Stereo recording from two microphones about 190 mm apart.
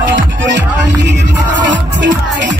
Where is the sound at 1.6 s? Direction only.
75° right (ahead or behind).